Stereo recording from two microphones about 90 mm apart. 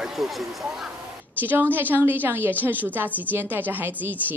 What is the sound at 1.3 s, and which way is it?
A woman's voice, 20° right (ahead or behind).